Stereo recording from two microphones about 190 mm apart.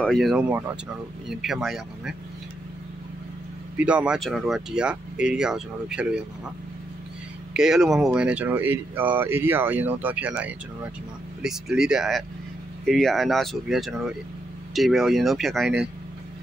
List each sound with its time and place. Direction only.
0.0 s speech: centre (ahead or behind)
3.7 s speech: 5° right (ahead or behind)
7.5 s speech: 5° right (ahead or behind)